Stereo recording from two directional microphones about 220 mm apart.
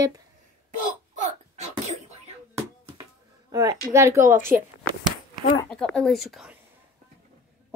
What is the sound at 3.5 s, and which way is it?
Speech, 15° right (ahead or behind).